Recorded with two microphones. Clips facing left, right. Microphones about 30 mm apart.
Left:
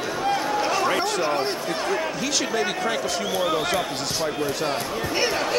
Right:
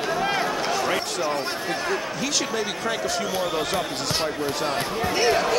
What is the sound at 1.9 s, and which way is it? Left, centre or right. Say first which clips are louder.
Speech: left 1 dB; centre.